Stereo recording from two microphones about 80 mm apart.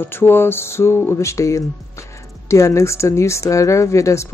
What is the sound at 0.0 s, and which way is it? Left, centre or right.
Speech, left.